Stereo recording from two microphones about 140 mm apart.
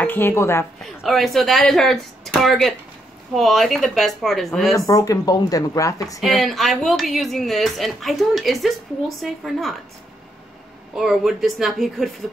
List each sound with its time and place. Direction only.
0.0 s speech: 15° left (ahead or behind)
0.8 s speech: centre (ahead or behind)
4.7 s speech: 25° left (ahead or behind)
6.2 s speech: centre (ahead or behind)
11.0 s speech: centre (ahead or behind)